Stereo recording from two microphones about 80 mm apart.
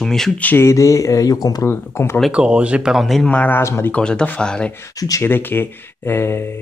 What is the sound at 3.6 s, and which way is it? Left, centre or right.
Speech, left.